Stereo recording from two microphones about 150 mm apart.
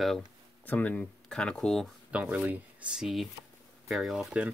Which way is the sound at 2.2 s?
10° right (ahead or behind).